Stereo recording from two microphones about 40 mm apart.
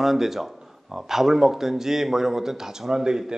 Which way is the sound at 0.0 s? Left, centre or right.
Centre.